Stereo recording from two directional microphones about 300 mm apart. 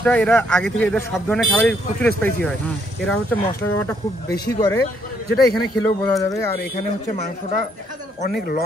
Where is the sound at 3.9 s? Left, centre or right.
Centre.